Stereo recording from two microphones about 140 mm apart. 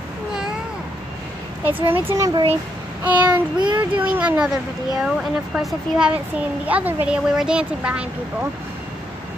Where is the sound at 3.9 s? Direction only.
10° right (ahead or behind).